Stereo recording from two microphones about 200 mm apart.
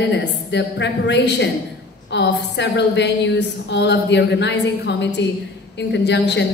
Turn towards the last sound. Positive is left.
turn(degrees=60)  # may be behind; listen again after turning